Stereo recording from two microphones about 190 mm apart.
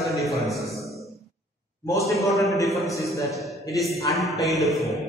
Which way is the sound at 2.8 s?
15° left (ahead or behind).